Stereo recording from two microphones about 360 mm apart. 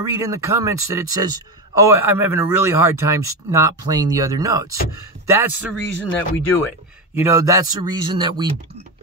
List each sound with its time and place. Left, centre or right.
0.0 s a man's voice: centre
5.9 s speech: left
7.2 s speech: centre